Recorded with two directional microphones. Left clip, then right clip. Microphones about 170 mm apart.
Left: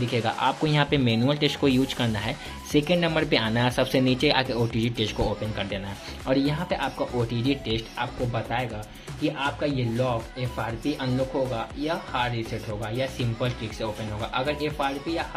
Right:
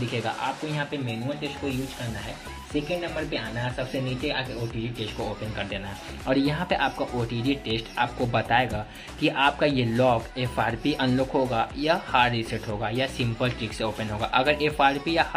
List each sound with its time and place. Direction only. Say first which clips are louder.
0.1 s speech: left 5 dB; 20° left (ahead or behind)
0.7 s speech: left 7 dB; 45° left (ahead or behind)
2.7 s speech: left 6 dB; 40° left (ahead or behind)
6.2 s speech: even; centre (ahead or behind)
8.3 s speech: right 6 dB; 10° right (ahead or behind)
12.8 s speech: right 2 dB; 5° right (ahead or behind)